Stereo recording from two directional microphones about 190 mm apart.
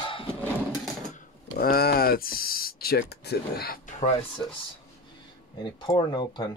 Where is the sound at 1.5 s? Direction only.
50° left (ahead or behind).